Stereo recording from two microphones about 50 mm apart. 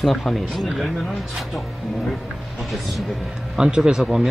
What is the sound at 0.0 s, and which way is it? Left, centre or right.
Speech, centre.